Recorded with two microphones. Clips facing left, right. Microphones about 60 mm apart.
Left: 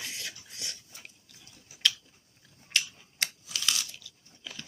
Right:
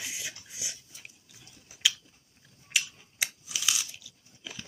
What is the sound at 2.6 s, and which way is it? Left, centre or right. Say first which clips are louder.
Biting: even; centre.